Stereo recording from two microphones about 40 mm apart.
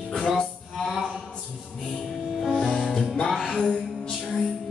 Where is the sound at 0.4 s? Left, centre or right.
Centre.